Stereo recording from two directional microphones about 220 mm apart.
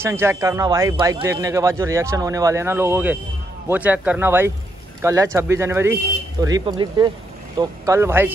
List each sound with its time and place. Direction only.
0.0 s speech: 10° right (ahead or behind)